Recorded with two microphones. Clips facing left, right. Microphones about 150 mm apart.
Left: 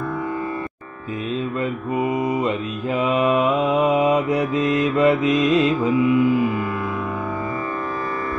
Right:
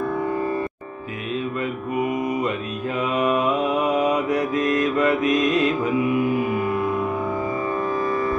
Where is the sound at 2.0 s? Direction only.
25° left (ahead or behind).